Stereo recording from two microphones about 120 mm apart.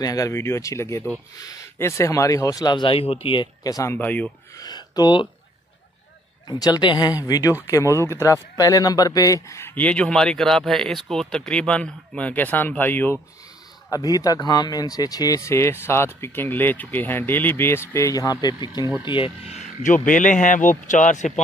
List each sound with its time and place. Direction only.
0.0 s speech: 30° left (ahead or behind); by 3.4 s 50° left (ahead or behind)
3.6 s speech: 30° left (ahead or behind)
3.9 s speech: 15° left (ahead or behind)
4.6 s speech: 35° left (ahead or behind)
6.4 s speech: 35° left (ahead or behind); by 13.2 s 15° left (ahead or behind)
13.8 s speech: 30° left (ahead or behind)
19.0 s speech: 45° left (ahead or behind); by 21.3 s 90° left